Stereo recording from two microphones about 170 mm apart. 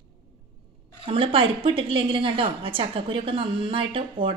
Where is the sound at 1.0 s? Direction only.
30° right (ahead or behind).